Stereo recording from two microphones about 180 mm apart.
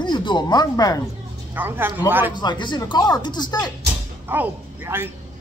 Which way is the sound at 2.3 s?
25° left (ahead or behind).